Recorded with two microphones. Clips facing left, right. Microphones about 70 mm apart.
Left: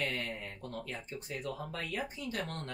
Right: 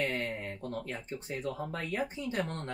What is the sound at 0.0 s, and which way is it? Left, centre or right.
Speech, right.